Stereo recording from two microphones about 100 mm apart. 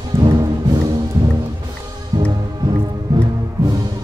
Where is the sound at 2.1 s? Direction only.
45° right (ahead or behind).